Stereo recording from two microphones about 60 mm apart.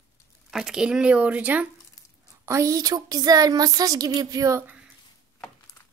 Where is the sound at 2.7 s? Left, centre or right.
Right.